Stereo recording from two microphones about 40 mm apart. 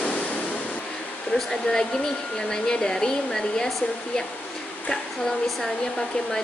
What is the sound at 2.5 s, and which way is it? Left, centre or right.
Speech, centre.